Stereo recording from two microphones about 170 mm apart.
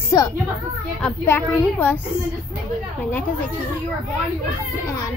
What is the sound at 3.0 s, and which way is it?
Speech, 10° left (ahead or behind).